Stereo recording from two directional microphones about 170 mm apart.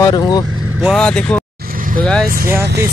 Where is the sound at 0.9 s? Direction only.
5° left (ahead or behind).